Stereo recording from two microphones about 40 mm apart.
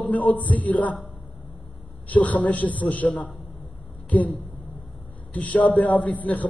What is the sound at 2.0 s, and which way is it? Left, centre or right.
A man's voice, left.